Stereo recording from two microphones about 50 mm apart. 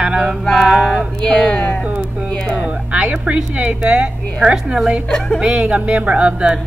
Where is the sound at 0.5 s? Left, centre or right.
Centre.